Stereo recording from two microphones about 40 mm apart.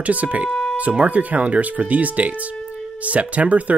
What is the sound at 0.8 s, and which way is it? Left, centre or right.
Speech, right.